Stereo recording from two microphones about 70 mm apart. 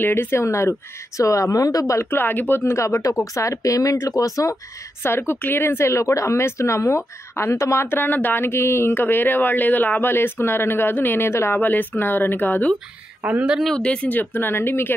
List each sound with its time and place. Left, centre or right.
0.0 s a woman's voice: left
2.0 s a woman's voice: left
5.0 s speech: left
11.5 s speech: left
13.2 s speech: centre
13.7 s speech: centre
14.0 s speech: left